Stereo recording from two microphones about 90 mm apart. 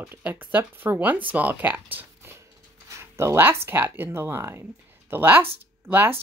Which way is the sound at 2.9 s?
30° right (ahead or behind).